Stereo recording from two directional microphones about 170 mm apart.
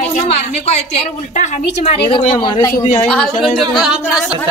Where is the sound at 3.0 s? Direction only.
5° left (ahead or behind).